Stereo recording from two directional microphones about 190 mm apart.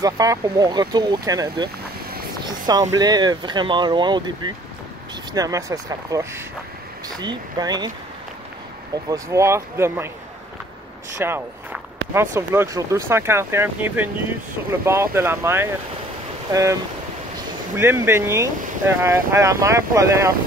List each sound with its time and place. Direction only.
0.0 s speech: 20° right (ahead or behind)
9.1 s speech: 15° right (ahead or behind)
11.1 s a sound: 10° right (ahead or behind)
12.4 s speech: 15° right (ahead or behind)
17.4 s speech: 10° right (ahead or behind)